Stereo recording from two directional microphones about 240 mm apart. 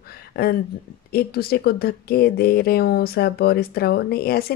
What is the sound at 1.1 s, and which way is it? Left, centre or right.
Speech, left.